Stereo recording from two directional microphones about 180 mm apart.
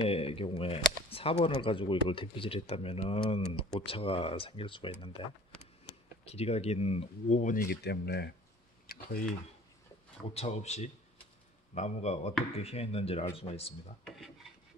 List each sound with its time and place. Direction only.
0.0 s speech: 30° left (ahead or behind)
6.2 s speech: 35° left (ahead or behind); by 8.3 s 65° left (ahead or behind)
8.9 s typing: 55° left (ahead or behind)
10.3 s speech: 35° left (ahead or behind)
14.0 s filing: centre (ahead or behind)